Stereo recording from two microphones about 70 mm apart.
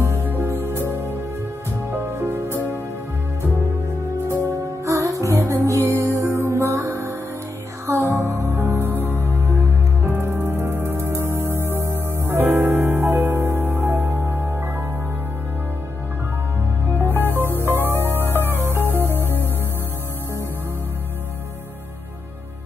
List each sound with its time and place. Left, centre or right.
0.0 s music: right
2.1 s music: right
4.3 s music: right
17.2 s music: right